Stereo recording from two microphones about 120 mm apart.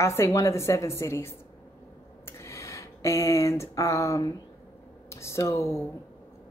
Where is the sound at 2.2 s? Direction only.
25° left (ahead or behind).